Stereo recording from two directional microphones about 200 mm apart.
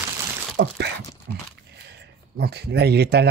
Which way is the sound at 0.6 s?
55° right (ahead or behind).